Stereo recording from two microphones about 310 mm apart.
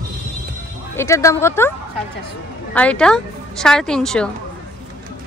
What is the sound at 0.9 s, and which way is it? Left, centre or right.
Speech, centre.